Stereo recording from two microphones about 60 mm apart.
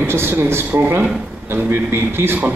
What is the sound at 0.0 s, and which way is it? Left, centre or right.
A man's voice, right.